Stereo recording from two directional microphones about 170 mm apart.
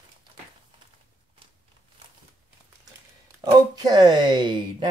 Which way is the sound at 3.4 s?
20° right (ahead or behind).